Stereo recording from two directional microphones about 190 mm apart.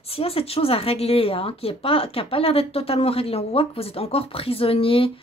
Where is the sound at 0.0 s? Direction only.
30° left (ahead or behind).